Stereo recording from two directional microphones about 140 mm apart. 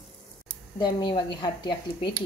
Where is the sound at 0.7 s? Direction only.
35° left (ahead or behind).